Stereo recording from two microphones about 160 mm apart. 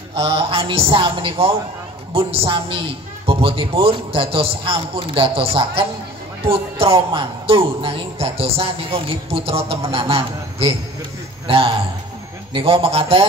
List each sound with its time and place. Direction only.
0.1 s speech: 35° right (ahead or behind)